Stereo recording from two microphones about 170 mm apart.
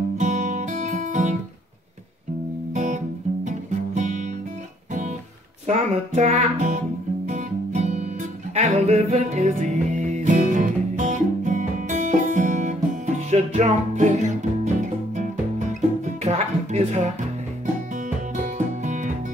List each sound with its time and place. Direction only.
0.2 s guitar: 45° right (ahead or behind)
2.7 s music: 45° right (ahead or behind)
5.7 s music: 40° right (ahead or behind)